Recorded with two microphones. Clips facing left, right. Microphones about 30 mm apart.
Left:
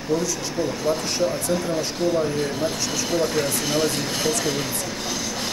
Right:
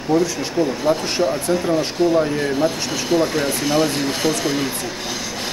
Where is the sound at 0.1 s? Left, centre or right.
Right; by 4.6 s centre.